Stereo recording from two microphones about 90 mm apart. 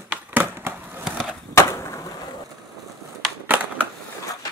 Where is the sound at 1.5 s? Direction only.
30° left (ahead or behind).